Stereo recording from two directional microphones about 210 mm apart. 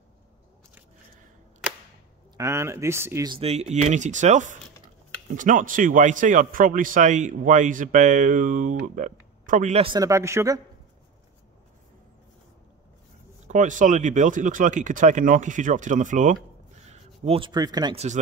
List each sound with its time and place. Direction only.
2.3 s speech: 15° right (ahead or behind)
3.3 s a man's voice: 30° right (ahead or behind)
9.9 s speech: 15° right (ahead or behind)
13.5 s a man's voice: 35° right (ahead or behind); by 17.9 s 20° right (ahead or behind)